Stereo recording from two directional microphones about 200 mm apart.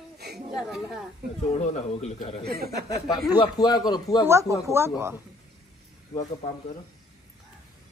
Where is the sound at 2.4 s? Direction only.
50° right (ahead or behind).